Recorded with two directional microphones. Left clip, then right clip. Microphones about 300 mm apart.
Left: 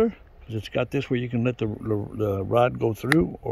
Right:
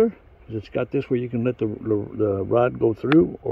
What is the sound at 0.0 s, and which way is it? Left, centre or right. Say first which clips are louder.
Speech: right 3 dB; centre.